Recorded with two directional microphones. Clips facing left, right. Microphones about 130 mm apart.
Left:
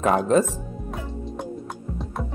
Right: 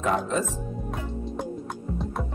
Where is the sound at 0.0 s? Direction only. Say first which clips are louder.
Left 6 dB; 50° left (ahead or behind).